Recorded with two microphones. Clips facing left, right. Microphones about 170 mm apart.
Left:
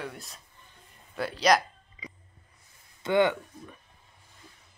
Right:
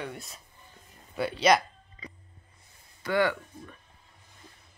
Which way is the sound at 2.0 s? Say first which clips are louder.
Even; 10° left (ahead or behind).